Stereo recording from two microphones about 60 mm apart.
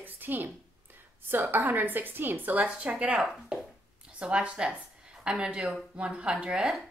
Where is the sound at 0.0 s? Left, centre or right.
Right.